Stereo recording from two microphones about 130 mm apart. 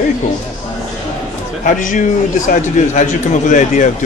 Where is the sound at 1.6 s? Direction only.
85° left.